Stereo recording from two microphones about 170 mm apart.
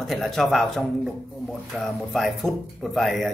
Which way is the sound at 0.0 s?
Centre (ahead or behind).